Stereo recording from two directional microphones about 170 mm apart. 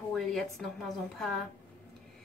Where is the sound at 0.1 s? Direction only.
Centre (ahead or behind).